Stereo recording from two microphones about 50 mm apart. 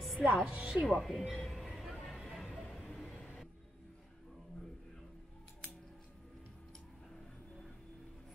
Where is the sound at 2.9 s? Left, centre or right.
Centre.